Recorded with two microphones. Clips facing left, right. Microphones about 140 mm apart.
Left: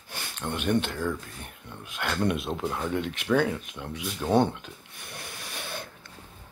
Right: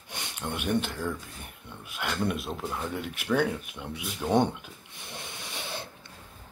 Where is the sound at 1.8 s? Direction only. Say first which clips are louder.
Left 3 dB; 5° right (ahead or behind).